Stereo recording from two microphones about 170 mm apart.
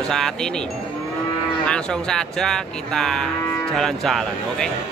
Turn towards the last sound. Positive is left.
turn(degrees=0)  # may be behind; listen again after turning